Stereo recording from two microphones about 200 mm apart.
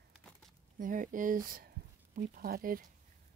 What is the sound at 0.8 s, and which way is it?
Speech, 40° right (ahead or behind).